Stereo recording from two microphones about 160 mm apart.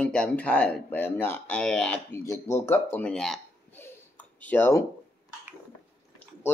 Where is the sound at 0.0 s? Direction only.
5° left (ahead or behind).